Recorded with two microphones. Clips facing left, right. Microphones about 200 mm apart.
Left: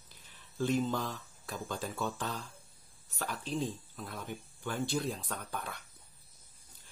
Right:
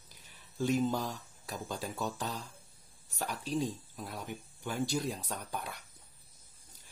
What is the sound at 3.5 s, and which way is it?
Speech, 10° right (ahead or behind).